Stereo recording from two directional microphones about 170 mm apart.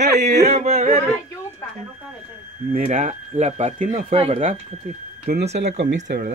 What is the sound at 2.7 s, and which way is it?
Speech, 45° right (ahead or behind).